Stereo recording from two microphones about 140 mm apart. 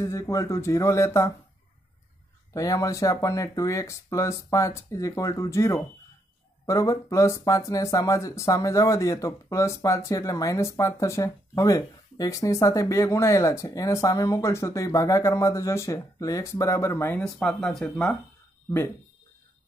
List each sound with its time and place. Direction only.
0.0 s speech: 20° left (ahead or behind)
2.5 s speech: 25° left (ahead or behind)
17.2 s speech: 5° left (ahead or behind)